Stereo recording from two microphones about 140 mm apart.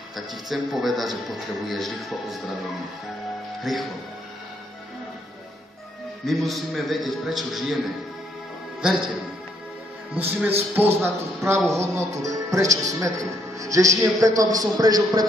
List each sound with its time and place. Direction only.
0.1 s speech: centre (ahead or behind)
3.6 s speech: centre (ahead or behind)
6.2 s speech: centre (ahead or behind)
8.8 s speech: 5° right (ahead or behind)
10.1 s a man's voice: 10° right (ahead or behind); by 15.2 s 30° right (ahead or behind)